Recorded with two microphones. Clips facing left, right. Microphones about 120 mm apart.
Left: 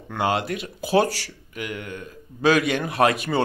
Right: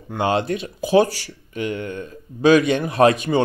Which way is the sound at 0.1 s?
25° right (ahead or behind).